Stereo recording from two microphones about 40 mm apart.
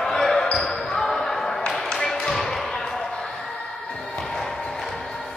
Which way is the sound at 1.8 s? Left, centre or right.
Centre.